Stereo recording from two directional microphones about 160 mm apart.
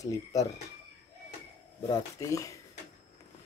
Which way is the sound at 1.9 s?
20° left (ahead or behind).